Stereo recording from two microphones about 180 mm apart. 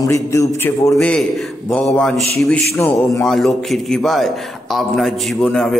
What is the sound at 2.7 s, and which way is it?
Speech, 15° left (ahead or behind).